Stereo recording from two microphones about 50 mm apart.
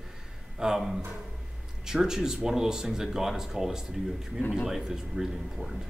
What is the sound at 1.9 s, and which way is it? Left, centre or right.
Speech, centre.